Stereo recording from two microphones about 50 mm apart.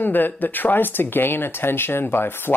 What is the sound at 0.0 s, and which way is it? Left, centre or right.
Speech, left.